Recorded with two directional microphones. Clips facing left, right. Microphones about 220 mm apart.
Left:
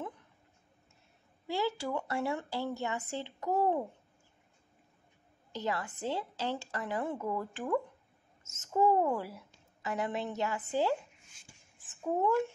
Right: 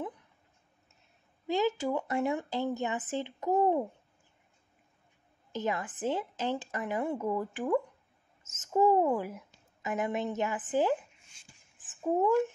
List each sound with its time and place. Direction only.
1.5 s a woman's voice: 20° right (ahead or behind)
5.5 s a woman's voice: 20° right (ahead or behind)